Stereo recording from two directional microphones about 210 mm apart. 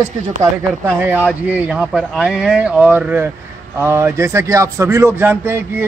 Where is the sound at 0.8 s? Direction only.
5° right (ahead or behind).